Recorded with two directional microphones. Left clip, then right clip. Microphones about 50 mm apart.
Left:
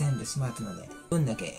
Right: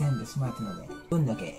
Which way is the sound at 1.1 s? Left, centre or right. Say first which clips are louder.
Even; centre.